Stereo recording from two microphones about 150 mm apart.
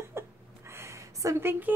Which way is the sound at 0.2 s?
15° right (ahead or behind).